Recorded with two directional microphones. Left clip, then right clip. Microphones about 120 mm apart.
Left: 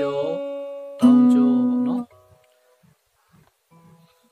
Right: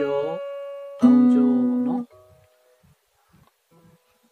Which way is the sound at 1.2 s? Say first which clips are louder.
Left 1 dB; 5° left (ahead or behind).